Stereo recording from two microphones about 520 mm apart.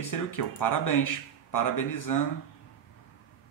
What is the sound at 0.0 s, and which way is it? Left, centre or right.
Speech, left.